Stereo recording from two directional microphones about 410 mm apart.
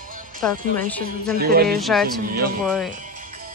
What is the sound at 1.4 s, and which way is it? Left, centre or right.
Speech, right.